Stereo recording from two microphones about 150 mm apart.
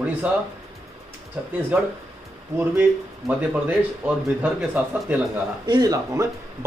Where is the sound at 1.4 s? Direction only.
10° right (ahead or behind).